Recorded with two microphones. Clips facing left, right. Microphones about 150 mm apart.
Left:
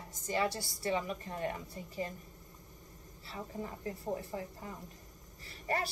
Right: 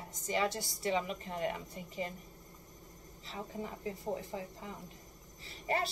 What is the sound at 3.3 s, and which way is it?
A woman's voice, 20° right (ahead or behind).